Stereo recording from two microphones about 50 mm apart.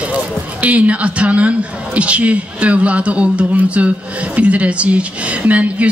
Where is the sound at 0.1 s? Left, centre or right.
Right.